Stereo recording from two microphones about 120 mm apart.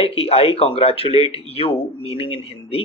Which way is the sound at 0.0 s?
55° left (ahead or behind).